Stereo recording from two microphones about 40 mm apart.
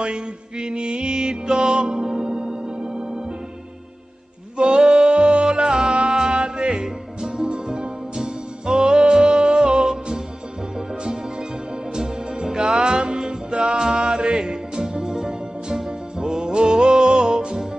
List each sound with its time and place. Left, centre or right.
0.0 s music: right
2.0 s organ: centre
4.6 s music: centre
11.9 s music: centre